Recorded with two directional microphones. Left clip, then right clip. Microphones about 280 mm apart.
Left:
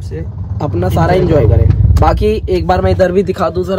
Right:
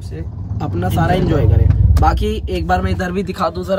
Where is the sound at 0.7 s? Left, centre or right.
Centre.